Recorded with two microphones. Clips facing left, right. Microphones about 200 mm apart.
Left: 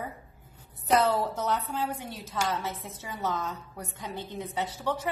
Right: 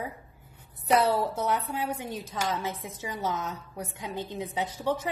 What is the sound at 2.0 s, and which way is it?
Speech, 15° right (ahead or behind).